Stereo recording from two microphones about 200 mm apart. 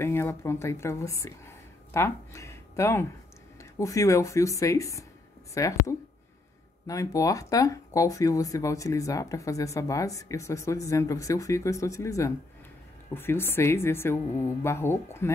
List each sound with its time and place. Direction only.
0.0 s speech: 10° left (ahead or behind)